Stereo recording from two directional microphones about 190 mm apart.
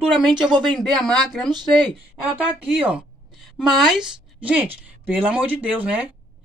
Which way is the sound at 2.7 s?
5° right (ahead or behind).